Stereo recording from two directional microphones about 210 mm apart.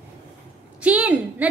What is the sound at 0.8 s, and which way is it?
Speech, 5° right (ahead or behind).